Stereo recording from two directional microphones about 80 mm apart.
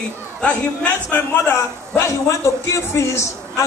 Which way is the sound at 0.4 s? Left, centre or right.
Centre.